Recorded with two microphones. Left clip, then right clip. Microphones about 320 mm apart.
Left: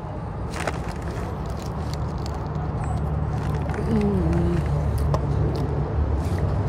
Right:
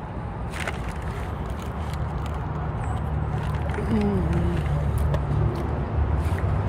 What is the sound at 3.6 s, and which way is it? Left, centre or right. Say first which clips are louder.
Vehicle: left 1 dB; left.